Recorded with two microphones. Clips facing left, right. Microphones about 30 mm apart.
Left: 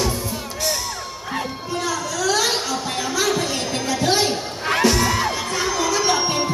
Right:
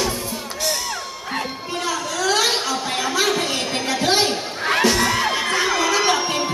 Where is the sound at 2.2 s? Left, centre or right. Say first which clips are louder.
Right 1 dB; right.